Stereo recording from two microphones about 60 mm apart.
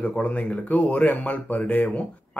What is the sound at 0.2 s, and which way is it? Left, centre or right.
Speech, left.